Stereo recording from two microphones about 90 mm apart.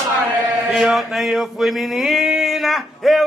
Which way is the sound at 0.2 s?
20° right (ahead or behind).